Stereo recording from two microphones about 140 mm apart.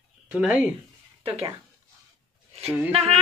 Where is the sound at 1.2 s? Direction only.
40° right (ahead or behind).